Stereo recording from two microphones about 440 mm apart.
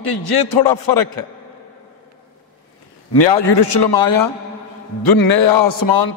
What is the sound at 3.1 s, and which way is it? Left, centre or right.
A man's voice, left.